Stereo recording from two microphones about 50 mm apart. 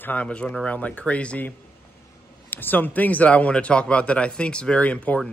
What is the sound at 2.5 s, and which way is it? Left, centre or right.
Speech, left.